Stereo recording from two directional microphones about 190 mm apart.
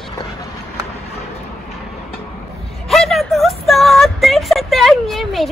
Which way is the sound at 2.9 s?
Centre (ahead or behind).